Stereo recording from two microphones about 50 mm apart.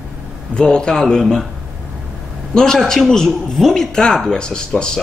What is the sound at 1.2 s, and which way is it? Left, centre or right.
Speech, centre.